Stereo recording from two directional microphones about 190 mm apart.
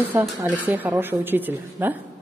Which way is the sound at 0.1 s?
15° right (ahead or behind).